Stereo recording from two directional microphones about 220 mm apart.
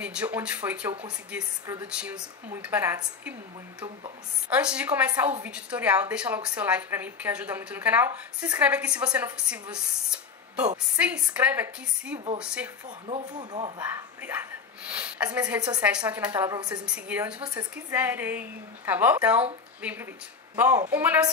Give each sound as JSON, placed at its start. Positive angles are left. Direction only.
{"t": 0.0, "sound": "a woman's voice", "side_deg": -5}
{"t": 4.5, "sound": "a woman's voice", "side_deg": -5}
{"t": 13.0, "sound": "speech", "side_deg": -20}
{"t": 13.7, "sound": "a woman's voice", "side_deg": -10}
{"t": 16.5, "sound": "speech", "side_deg": -20}
{"t": 16.8, "sound": "a woman's voice", "side_deg": -5}